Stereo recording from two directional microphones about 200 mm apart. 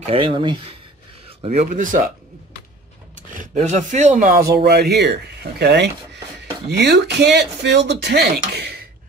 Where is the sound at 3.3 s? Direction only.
35° right (ahead or behind); by 8.8 s 55° right (ahead or behind).